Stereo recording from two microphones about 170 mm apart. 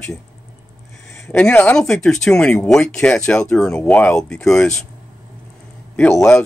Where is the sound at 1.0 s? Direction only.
5° left (ahead or behind).